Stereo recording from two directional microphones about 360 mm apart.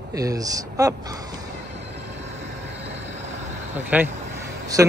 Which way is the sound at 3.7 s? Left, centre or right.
Centre.